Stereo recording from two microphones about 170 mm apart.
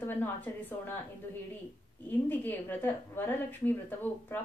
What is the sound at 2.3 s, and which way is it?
A woman's voice, 10° left (ahead or behind).